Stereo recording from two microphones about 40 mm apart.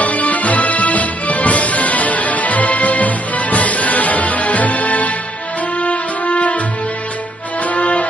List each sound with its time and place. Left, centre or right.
0.0 s music: left
7.6 s music: left